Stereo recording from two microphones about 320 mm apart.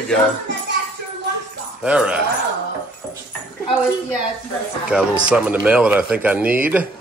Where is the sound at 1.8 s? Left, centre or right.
Centre.